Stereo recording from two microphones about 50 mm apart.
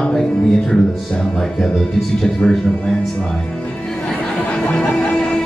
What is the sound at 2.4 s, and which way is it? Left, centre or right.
Speech, centre.